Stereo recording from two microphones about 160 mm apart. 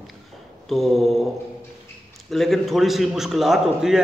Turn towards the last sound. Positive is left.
turn(degrees=0)  # may be behind; listen again after turning